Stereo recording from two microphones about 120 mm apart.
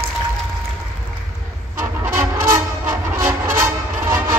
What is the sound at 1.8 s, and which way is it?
Music, 20° right (ahead or behind).